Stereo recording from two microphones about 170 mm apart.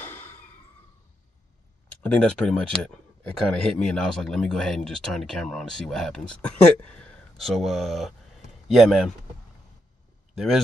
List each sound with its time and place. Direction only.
0.0 s a sound: 10° left (ahead or behind)
2.0 s speech: 5° left (ahead or behind)
10.3 s speech: centre (ahead or behind)